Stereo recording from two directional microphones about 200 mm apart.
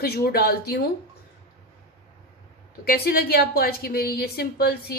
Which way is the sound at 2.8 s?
50° left (ahead or behind).